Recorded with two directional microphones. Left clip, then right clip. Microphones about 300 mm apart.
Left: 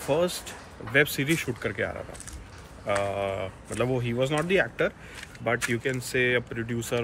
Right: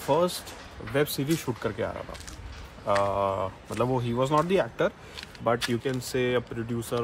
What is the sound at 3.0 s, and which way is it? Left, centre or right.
Speech, centre.